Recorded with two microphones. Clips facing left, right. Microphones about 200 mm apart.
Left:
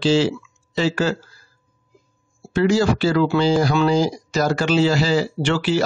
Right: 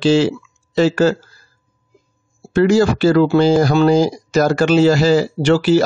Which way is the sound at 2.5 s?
50° right (ahead or behind).